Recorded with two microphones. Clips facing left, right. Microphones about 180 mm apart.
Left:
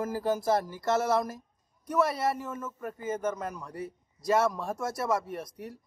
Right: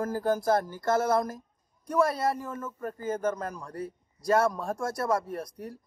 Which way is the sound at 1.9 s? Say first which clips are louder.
Right 1 dB; 5° left (ahead or behind).